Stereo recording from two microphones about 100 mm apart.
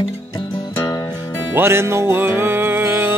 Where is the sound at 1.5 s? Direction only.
25° right (ahead or behind).